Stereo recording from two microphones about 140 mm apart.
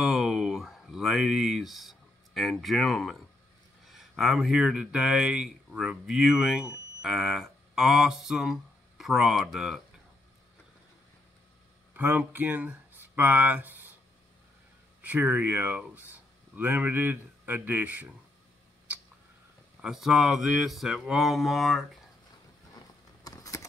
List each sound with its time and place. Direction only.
0.0 s a sound: 5° right (ahead or behind)
3.8 s speech: centre (ahead or behind)
11.9 s speech: 10° right (ahead or behind)
15.0 s speech: 10° right (ahead or behind)
19.8 s speech: 5° right (ahead or behind)
23.2 s keys jangling: 25° left (ahead or behind)